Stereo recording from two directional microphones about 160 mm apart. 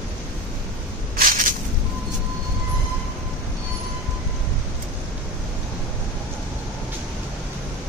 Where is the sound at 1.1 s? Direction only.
60° right (ahead or behind).